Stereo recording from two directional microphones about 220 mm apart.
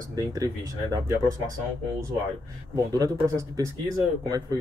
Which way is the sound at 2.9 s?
15° right (ahead or behind).